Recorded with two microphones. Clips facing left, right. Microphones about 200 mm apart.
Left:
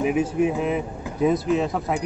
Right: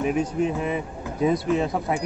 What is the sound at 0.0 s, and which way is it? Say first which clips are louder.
A man's voice: left 2 dB; 5° left (ahead or behind).